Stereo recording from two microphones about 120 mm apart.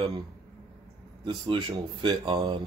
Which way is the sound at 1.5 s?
45° right (ahead or behind).